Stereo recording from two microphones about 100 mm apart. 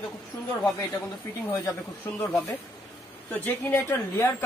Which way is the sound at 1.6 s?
25° left (ahead or behind).